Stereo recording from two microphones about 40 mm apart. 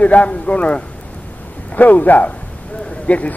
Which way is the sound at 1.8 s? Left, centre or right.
Left.